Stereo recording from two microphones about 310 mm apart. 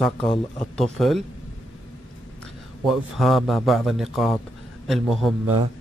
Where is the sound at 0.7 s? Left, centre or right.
Centre.